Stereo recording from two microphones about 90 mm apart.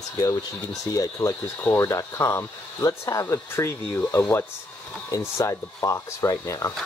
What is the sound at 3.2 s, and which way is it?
Speech, 25° left (ahead or behind).